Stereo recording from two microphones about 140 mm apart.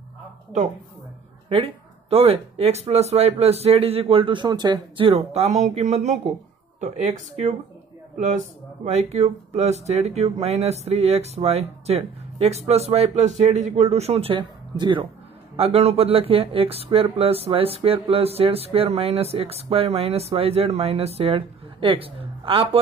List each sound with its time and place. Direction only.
1.5 s speech: 40° right (ahead or behind)
8.8 s speech: 50° right (ahead or behind)